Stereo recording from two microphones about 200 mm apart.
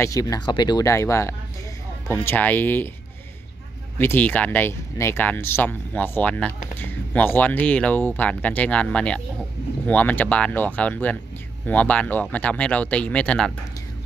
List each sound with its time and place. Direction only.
0.0 s speech: 15° left (ahead or behind)
4.0 s speech: 10° left (ahead or behind)